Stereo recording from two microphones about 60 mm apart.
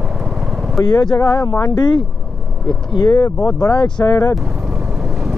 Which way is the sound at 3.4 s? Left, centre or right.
Left.